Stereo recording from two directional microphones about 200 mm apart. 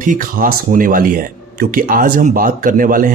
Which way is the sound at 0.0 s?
40° right (ahead or behind).